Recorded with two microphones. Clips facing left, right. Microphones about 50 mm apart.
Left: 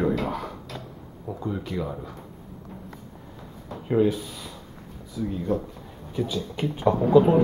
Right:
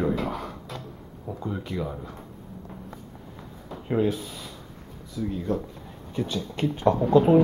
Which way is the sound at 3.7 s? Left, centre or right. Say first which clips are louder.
Left 3 dB; centre.